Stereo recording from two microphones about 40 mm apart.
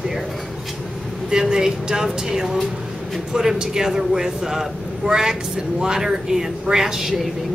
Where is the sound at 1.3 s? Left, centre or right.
Centre.